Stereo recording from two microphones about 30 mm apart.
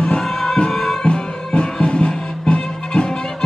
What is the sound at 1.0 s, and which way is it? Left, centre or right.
Music, left.